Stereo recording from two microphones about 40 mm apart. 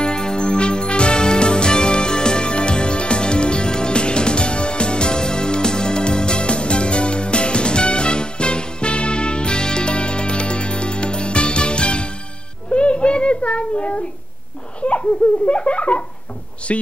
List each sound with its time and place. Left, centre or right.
0.0 s music: centre
12.7 s a sound: left
14.8 s laughter: left